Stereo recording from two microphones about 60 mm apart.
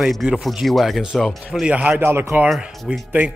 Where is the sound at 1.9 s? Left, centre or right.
Right.